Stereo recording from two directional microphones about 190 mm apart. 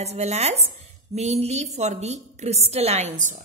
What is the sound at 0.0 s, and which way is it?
A woman's voice, 35° right (ahead or behind).